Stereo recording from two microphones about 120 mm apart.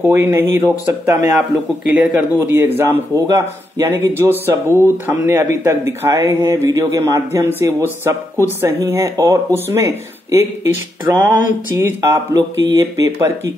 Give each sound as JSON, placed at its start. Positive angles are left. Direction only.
{"t": 0.0, "sound": "a man's voice", "side_deg": -20}
{"t": 11.1, "sound": "speech", "side_deg": -30}